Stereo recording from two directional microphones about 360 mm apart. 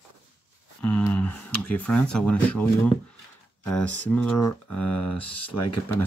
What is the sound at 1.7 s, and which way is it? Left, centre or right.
Speech, centre.